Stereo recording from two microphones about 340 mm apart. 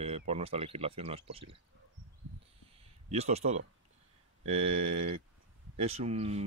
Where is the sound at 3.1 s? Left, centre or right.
Centre.